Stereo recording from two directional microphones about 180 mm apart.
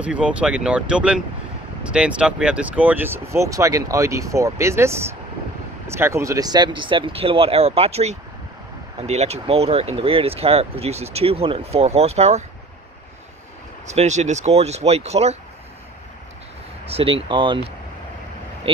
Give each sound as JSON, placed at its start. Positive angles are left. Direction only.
{"t": 0.0, "sound": "speech", "side_deg": -5}
{"t": 13.8, "sound": "speech", "side_deg": -40}
{"t": 16.8, "sound": "speech", "side_deg": -30}